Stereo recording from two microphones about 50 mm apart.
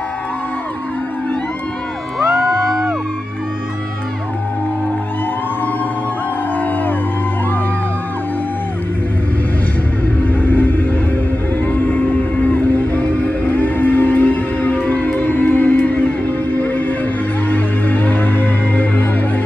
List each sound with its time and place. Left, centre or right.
2.1 s music: centre
6.6 s music: left
10.2 s music: left